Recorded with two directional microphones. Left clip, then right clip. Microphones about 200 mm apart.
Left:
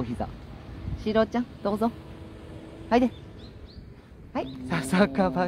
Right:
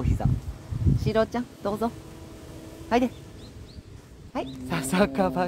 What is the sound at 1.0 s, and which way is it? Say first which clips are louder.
Speech: left 1 dB; 5° left (ahead or behind).